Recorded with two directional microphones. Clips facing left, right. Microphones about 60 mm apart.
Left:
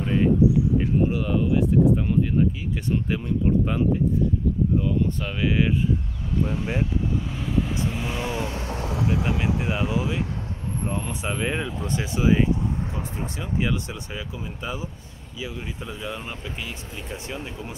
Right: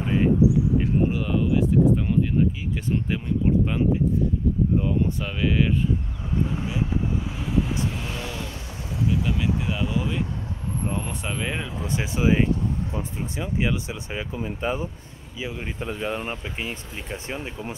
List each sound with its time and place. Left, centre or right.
0.0 s a sound: centre
0.7 s a sound: centre
5.2 s speech: centre
7.2 s speech: centre
7.8 s vehicle: centre
8.2 s vehicle: left
8.6 s vehicle: left
9.4 s speech: centre
11.2 s speech: centre
11.9 s speech: centre
14.3 s speech: right
15.3 s speech: right
15.6 s speech: right